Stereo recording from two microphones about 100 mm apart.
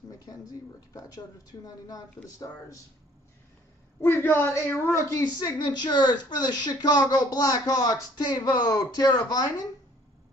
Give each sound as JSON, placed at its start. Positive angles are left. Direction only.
{"t": 0.1, "sound": "speech", "side_deg": 35}
{"t": 4.0, "sound": "a man's voice", "side_deg": 25}
{"t": 4.8, "sound": "a woman's voice", "side_deg": 30}